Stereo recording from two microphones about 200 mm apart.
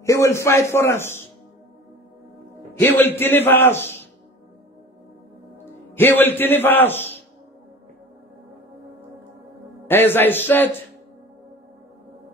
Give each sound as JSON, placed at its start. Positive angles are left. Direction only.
{"t": 0.0, "sound": "a man's voice", "side_deg": 15}
{"t": 2.8, "sound": "a man's voice", "side_deg": 10}
{"t": 5.9, "sound": "a man's voice", "side_deg": 10}
{"t": 9.8, "sound": "a man's voice", "side_deg": 10}